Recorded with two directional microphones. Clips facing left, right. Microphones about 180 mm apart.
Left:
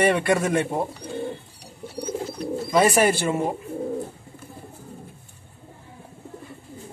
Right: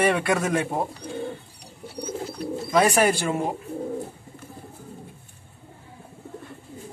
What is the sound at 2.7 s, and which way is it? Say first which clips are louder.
Speech: left 1 dB; 5° left (ahead or behind).